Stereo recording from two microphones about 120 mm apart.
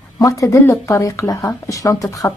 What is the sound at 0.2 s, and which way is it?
A woman's voice, 25° left (ahead or behind).